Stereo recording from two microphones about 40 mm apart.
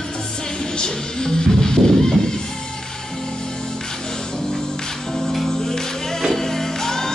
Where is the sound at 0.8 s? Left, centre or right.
Centre.